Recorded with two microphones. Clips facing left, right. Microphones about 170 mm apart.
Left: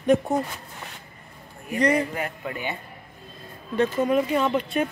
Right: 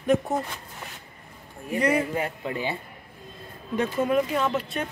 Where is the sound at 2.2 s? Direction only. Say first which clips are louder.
Right 2 dB; 25° right (ahead or behind).